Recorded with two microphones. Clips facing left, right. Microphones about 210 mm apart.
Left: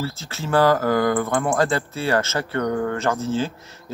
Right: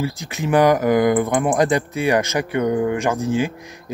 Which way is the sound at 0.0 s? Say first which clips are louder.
Right 5 dB; 15° right (ahead or behind).